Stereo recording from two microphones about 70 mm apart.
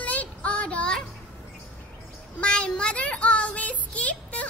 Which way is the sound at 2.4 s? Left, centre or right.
Centre.